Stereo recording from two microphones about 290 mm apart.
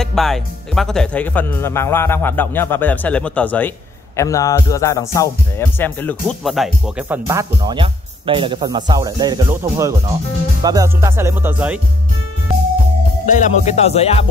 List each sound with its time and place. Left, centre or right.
0.0 s music: centre
10.6 s speech: centre
13.3 s music: left